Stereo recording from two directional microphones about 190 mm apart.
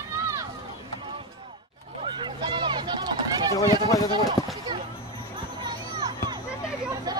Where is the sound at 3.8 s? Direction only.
15° left (ahead or behind).